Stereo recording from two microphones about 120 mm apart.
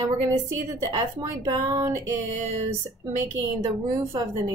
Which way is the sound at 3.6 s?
25° right (ahead or behind).